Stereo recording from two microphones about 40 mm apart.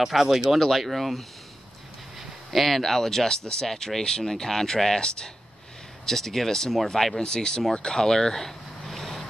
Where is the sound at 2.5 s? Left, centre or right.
Centre.